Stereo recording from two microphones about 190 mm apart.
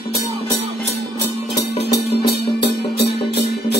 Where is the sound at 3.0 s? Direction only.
60° left (ahead or behind).